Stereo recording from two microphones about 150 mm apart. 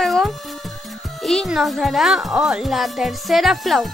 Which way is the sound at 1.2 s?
Centre (ahead or behind).